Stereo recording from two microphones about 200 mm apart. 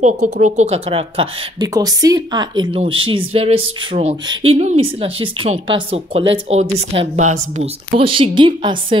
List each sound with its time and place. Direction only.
0.0 s speech: 35° right (ahead or behind)